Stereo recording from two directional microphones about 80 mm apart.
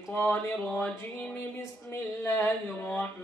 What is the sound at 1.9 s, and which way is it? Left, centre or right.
Speech, left.